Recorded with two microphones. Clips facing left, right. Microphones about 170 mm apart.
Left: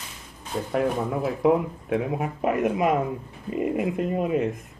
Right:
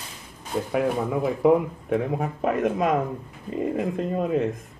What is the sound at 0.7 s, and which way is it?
A man's voice, 5° right (ahead or behind).